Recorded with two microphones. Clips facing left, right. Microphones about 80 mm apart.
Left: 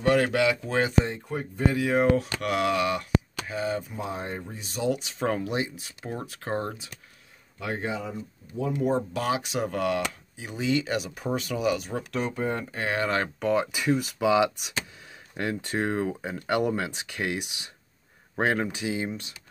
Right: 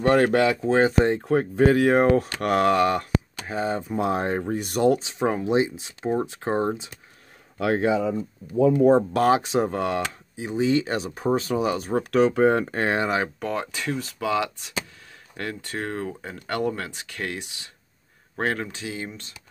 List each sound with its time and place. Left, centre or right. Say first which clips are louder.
0.0 s speech: right 4 dB; right
1.0 s speech: right 10 dB; right
1.9 s speech: right 4 dB; right
3.9 s speech: right 9 dB; right
5.2 s speech: right 5 dB; right
7.5 s speech: right 9 dB; right
9.1 s speech: right 8 dB; right
9.4 s speech: right 4 dB; right
12.1 s speech: right 11 dB; right
12.9 s speech: right 1 dB; right
13.4 s speech: left 3 dB; centre
13.7 s speech: left 3 dB; centre